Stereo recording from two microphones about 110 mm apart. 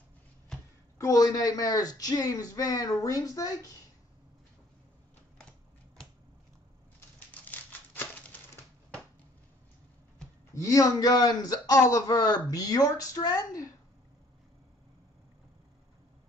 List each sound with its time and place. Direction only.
0.9 s a man's voice: 30° left (ahead or behind)
7.2 s a sound: 15° left (ahead or behind)
10.5 s a man's voice: 30° left (ahead or behind)